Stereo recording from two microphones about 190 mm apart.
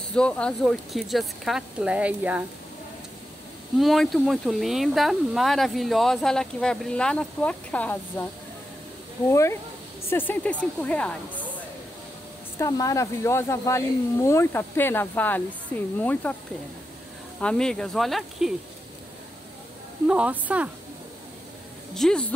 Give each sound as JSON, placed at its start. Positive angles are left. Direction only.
{"t": 0.1, "sound": "speech", "side_deg": 5}
{"t": 3.7, "sound": "speech", "side_deg": 0}
{"t": 9.3, "sound": "speech", "side_deg": 15}
{"t": 12.5, "sound": "speech", "side_deg": 15}
{"t": 17.4, "sound": "speech", "side_deg": 5}
{"t": 20.1, "sound": "speech", "side_deg": -5}
{"t": 21.9, "sound": "speech", "side_deg": 0}